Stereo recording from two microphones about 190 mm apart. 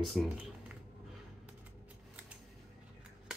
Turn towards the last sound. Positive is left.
turn(degrees=-5)  # may be behind; listen again after turning